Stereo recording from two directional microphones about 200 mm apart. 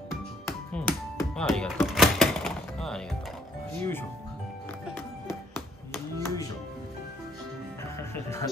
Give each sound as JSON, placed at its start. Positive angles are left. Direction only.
{"t": 0.5, "sound": "music", "side_deg": 10}
{"t": 1.9, "sound": "thunk", "side_deg": 0}
{"t": 6.2, "sound": "music", "side_deg": 15}
{"t": 8.1, "sound": "music", "side_deg": 15}